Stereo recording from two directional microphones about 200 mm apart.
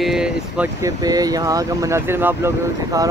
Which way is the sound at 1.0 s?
20° right (ahead or behind).